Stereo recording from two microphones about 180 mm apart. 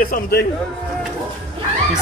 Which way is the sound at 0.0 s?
60° left (ahead or behind).